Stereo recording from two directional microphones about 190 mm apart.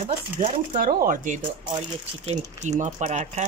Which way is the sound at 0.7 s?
45° right (ahead or behind).